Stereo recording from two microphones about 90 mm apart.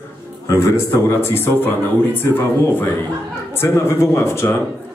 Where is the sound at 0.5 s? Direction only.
30° left (ahead or behind).